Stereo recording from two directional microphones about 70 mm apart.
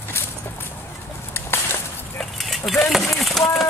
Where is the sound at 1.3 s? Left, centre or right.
Left.